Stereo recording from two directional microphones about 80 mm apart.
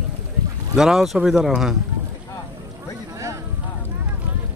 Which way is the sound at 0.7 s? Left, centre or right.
Centre.